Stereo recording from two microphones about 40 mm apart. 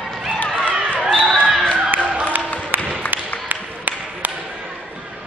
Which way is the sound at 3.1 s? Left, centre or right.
Right.